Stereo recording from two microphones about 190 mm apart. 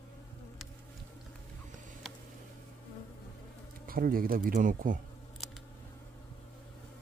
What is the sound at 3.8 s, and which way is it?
Speech, 50° right (ahead or behind).